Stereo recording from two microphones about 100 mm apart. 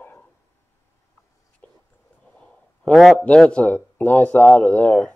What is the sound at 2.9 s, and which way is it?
A man's voice, 5° left (ahead or behind).